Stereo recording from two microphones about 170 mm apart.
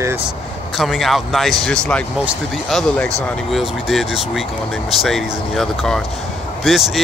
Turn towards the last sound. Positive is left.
turn(degrees=0)  # may be behind; listen again after turning